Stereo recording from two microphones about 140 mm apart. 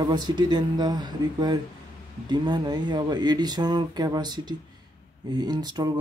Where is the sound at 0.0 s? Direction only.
30° right (ahead or behind).